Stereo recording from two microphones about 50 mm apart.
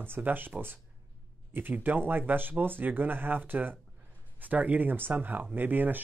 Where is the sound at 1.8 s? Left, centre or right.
Right.